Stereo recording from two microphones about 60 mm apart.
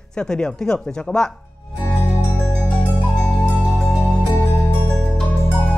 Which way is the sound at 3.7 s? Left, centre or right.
Centre.